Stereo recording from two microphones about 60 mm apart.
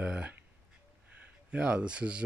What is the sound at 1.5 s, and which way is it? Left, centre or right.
Speech, centre.